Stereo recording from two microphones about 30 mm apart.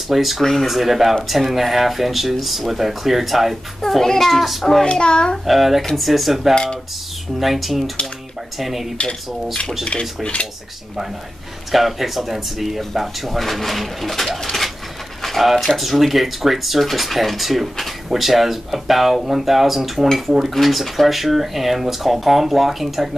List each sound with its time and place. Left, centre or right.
0.1 s speech: centre
0.4 s speech: centre
0.7 s speech: centre
3.8 s speech: centre
4.8 s a child's voice: left
5.4 s speech: centre
6.5 s a child's voice: left
7.3 s speech: centre
9.8 s cutlery: left
11.7 s speech: centre